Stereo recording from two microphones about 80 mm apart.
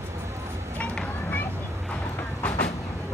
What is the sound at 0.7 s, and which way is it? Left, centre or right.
Children playing, centre.